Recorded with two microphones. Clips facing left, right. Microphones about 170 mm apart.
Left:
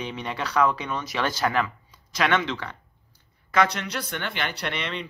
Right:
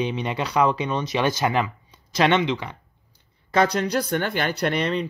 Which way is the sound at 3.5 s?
35° right (ahead or behind).